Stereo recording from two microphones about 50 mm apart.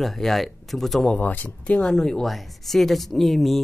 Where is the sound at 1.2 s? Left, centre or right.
Centre.